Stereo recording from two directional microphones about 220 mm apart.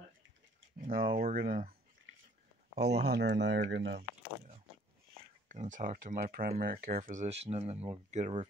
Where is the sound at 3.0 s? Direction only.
50° right (ahead or behind).